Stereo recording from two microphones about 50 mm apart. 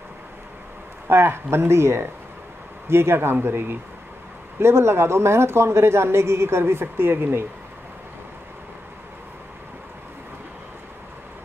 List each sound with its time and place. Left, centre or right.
1.0 s speech: right
4.6 s speech: right